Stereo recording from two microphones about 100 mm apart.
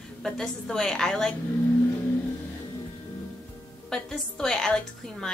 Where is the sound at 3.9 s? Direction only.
5° left (ahead or behind).